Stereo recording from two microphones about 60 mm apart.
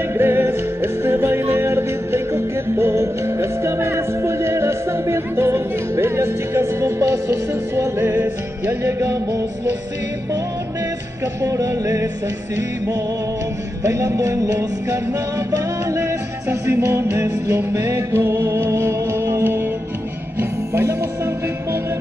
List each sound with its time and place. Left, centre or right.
0.1 s music: right
6.6 s music: right
11.4 s music: right
13.8 s music: right